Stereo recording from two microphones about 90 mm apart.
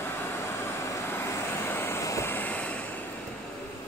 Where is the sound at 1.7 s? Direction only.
25° left (ahead or behind).